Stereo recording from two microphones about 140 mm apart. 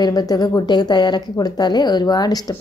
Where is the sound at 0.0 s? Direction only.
30° left (ahead or behind).